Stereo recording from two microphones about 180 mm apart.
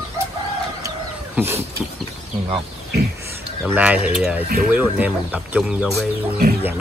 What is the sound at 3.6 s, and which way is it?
Speech, 5° right (ahead or behind).